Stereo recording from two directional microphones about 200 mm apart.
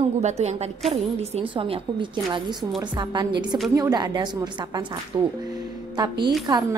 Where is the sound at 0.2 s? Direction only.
35° right (ahead or behind).